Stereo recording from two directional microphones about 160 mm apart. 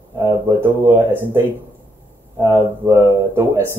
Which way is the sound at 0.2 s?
15° right (ahead or behind).